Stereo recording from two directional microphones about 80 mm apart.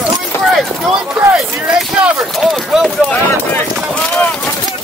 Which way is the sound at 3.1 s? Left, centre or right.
Centre.